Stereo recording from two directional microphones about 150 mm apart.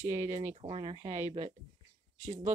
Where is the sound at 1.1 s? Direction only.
50° right (ahead or behind).